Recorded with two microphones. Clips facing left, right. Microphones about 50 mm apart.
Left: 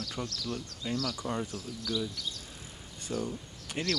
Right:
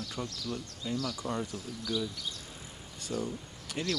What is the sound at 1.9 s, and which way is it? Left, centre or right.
Speech, centre.